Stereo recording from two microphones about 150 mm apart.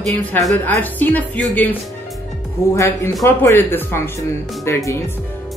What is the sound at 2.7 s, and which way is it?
Speech, 15° left (ahead or behind).